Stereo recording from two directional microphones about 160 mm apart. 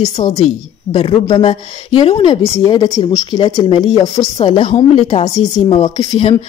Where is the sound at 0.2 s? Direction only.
35° left (ahead or behind).